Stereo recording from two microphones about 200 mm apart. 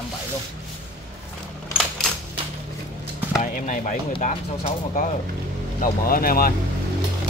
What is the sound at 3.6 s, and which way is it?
Speech, 40° left (ahead or behind).